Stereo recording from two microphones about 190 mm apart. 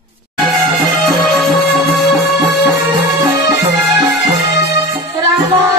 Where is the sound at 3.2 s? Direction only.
15° right (ahead or behind).